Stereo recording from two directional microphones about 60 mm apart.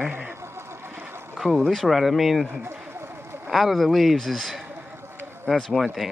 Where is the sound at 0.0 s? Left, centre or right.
Right.